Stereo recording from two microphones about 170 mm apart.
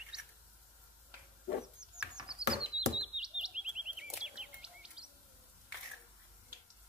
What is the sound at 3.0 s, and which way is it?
Bird, 5° right (ahead or behind).